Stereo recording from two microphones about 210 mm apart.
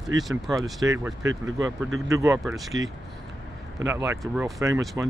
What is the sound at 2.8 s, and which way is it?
Speech, 65° right (ahead or behind).